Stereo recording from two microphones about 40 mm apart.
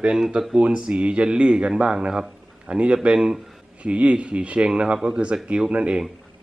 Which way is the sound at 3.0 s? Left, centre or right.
Centre.